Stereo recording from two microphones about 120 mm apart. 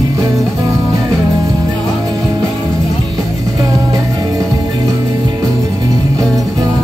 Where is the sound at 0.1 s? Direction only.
30° right (ahead or behind).